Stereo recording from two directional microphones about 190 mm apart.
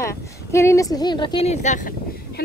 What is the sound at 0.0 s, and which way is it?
Speech, 15° left (ahead or behind).